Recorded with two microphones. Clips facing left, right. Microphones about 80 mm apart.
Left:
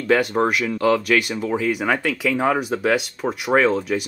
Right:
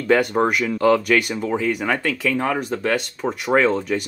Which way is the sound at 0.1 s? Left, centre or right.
Centre.